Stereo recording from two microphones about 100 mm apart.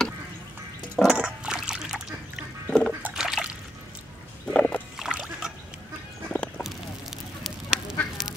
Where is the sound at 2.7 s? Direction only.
5° left (ahead or behind).